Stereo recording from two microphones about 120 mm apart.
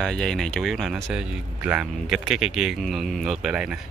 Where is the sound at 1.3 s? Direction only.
10° right (ahead or behind).